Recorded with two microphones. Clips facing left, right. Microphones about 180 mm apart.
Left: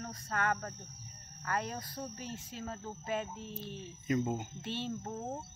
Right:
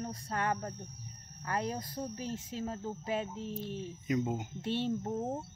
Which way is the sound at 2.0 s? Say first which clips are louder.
Right 4 dB; 15° right (ahead or behind).